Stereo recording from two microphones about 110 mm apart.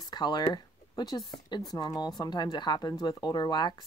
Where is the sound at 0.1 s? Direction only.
40° left (ahead or behind).